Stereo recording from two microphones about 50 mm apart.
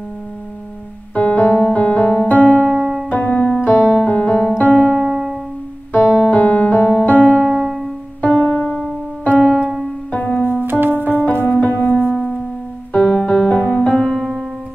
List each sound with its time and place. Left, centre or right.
1.1 s music: left
3.1 s piano: left
4.1 s music: left
6.2 s music: left
7.6 s music: centre
8.2 s music: left
10.1 s music: left
10.6 s music: right
11.1 s music: left; by 14.3 s centre